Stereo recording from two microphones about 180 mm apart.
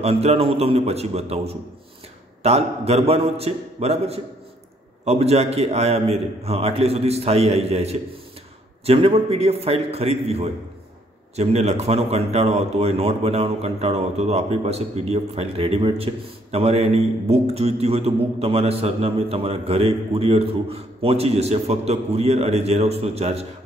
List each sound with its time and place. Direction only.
0.0 s a man's voice: 35° right (ahead or behind)